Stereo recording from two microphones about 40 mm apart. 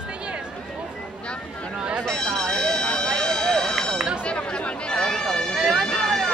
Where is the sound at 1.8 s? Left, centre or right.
Right.